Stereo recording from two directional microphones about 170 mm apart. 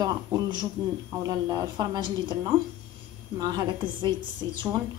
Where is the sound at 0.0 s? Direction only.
20° right (ahead or behind).